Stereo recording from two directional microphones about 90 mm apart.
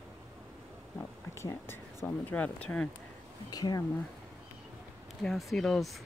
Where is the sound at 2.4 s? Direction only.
15° left (ahead or behind).